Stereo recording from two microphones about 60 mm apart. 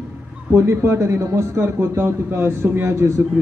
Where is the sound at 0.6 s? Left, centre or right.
Right.